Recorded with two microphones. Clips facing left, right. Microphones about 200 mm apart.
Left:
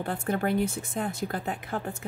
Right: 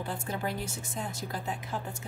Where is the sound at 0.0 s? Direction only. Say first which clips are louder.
Left 6 dB; 60° left (ahead or behind).